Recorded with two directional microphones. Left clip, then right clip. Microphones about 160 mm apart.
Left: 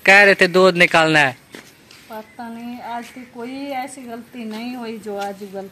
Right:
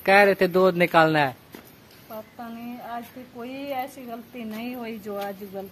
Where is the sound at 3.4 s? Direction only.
5° right (ahead or behind).